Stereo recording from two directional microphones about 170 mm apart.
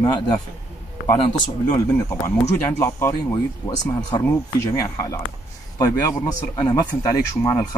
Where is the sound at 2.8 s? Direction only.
15° left (ahead or behind).